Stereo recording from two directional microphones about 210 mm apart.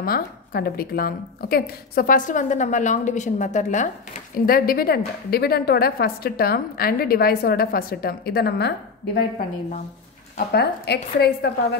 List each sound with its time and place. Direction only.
0.0 s a woman's voice: 45° left (ahead or behind)